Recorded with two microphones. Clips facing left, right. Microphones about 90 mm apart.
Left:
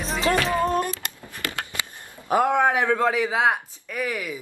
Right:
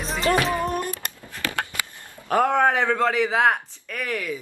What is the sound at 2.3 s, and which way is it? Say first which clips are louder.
A man's voice: even; 5° left (ahead or behind).